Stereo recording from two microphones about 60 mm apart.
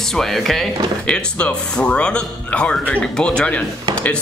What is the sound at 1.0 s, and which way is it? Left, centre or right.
A man's voice, centre.